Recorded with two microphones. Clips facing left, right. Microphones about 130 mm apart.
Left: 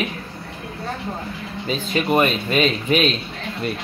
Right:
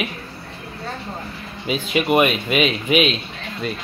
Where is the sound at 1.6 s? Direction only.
10° right (ahead or behind).